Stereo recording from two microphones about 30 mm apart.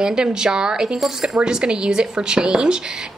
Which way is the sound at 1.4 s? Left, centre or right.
Right.